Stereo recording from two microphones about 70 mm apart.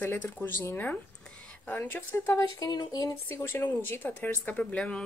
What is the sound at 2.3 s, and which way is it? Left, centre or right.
Speech, left.